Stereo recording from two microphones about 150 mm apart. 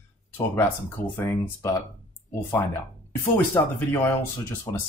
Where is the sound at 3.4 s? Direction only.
15° left (ahead or behind).